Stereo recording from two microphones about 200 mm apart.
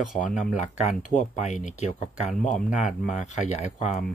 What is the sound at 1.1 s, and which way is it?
Speech, 40° left (ahead or behind).